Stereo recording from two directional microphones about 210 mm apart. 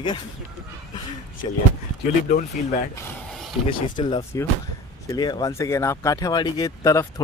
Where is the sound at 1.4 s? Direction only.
25° left (ahead or behind).